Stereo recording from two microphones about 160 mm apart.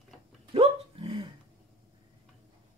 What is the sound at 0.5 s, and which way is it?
Dog, 35° right (ahead or behind).